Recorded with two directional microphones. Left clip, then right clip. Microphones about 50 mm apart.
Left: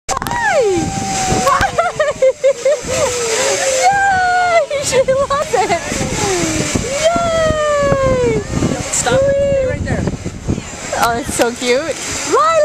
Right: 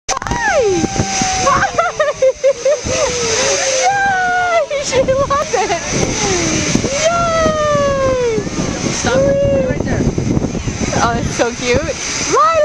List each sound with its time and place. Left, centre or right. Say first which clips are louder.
0.4 s a sound: even; left
2.7 s splash: even; left
3.8 s a sound: left 3 dB; left
7.1 s vehicle: left 1 dB; centre
7.3 s emergency vehicle: even; centre
11.0 s speech: left 1 dB; centre